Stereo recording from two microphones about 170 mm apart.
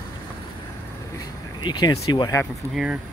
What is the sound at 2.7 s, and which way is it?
Speech, 5° right (ahead or behind).